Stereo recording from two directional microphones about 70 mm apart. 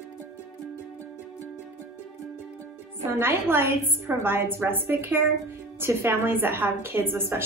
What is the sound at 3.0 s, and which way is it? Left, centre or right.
A woman's voice, right.